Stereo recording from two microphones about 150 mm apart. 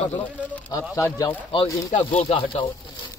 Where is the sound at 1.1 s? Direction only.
30° left (ahead or behind).